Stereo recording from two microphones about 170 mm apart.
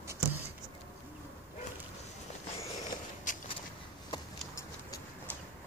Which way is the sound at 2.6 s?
45° left (ahead or behind).